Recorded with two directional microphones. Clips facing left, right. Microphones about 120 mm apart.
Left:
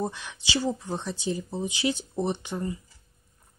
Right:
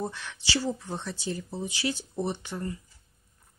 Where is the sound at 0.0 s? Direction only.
15° left (ahead or behind).